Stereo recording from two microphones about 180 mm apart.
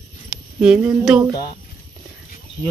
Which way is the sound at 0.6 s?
5° right (ahead or behind).